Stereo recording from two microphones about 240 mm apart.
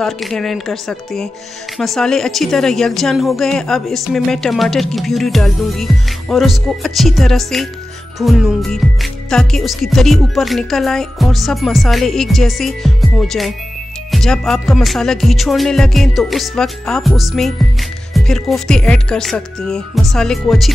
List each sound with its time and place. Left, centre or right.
0.0 s speech: centre